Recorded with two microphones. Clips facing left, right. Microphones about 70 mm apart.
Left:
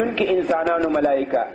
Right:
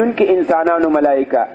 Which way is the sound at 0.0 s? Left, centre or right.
Right.